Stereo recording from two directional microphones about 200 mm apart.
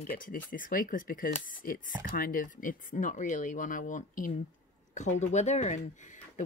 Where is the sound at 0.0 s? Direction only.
45° left (ahead or behind).